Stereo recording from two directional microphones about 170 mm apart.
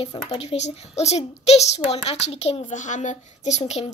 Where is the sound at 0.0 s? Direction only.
30° left (ahead or behind).